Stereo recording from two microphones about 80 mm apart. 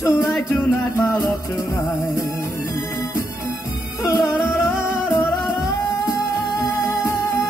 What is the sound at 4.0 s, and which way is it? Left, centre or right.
Music, left.